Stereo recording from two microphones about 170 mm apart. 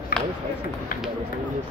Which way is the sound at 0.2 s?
5° left (ahead or behind).